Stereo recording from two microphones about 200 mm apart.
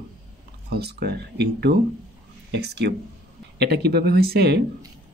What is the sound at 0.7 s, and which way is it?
Speech, 55° right (ahead or behind).